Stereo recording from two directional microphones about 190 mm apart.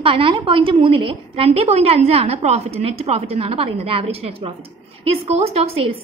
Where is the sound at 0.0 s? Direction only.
30° right (ahead or behind).